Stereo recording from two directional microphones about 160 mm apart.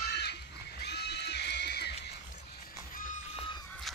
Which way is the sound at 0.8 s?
90° left.